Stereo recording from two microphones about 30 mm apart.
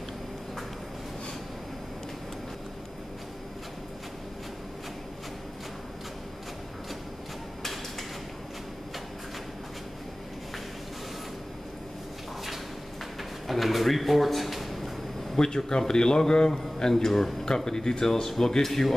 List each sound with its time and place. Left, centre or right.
13.5 s drawer open or close: centre
15.3 s a man's voice: left